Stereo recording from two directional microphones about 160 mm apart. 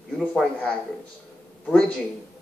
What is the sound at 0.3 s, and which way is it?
Speech, 5° left (ahead or behind).